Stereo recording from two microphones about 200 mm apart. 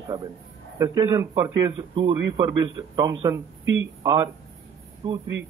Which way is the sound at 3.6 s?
70° right (ahead or behind).